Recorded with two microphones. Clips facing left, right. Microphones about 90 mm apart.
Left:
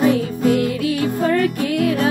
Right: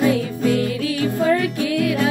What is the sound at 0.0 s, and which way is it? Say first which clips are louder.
Music: left 2 dB; 35° left (ahead or behind).